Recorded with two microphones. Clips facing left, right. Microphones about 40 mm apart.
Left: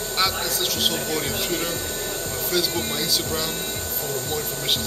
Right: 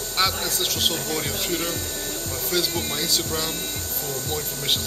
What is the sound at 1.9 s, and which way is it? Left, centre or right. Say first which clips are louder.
Music: left 2 dB; left.